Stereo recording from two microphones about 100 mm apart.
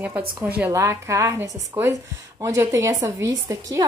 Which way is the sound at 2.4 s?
35° right (ahead or behind).